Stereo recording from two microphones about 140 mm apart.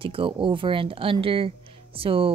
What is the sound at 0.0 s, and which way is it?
A woman's voice, 40° right (ahead or behind).